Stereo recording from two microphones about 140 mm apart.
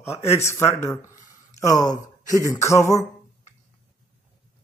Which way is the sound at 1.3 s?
25° left (ahead or behind).